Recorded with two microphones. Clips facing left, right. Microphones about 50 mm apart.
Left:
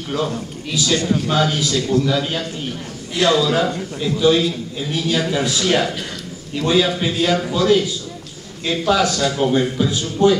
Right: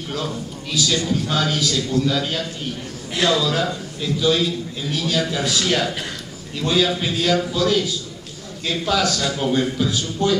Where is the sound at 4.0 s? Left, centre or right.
Centre.